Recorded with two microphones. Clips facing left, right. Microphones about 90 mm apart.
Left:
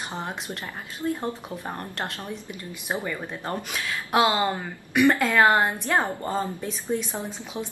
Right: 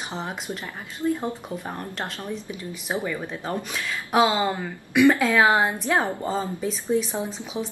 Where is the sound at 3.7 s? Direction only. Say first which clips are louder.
Right 2 dB; 5° left (ahead or behind).